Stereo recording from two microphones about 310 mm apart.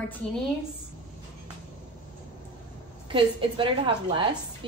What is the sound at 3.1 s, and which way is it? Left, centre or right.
A woman's voice, centre.